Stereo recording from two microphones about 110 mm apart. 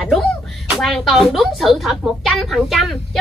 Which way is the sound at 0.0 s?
Centre (ahead or behind).